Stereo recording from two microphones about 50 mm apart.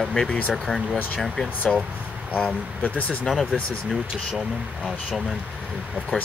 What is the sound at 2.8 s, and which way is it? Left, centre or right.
Speech, left.